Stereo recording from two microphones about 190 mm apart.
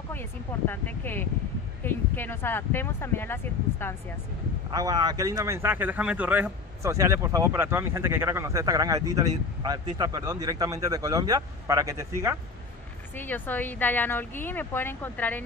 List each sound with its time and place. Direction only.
0.1 s speech: 10° left (ahead or behind)
4.6 s speech: 20° right (ahead or behind)
13.1 s speech: 10° left (ahead or behind)